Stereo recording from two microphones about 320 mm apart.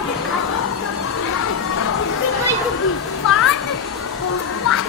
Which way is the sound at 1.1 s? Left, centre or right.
Left.